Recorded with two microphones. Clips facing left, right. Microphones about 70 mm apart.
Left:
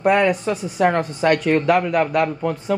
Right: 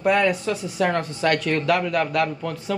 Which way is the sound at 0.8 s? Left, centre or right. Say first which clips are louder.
Left 5 dB; centre.